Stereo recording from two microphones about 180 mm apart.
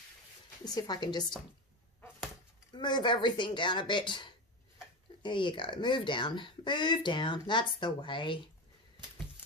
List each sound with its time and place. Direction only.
0.7 s speech: 20° left (ahead or behind)
2.7 s speech: 25° left (ahead or behind)